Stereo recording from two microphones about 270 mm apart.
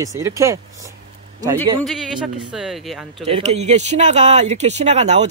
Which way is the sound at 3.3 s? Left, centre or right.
Right.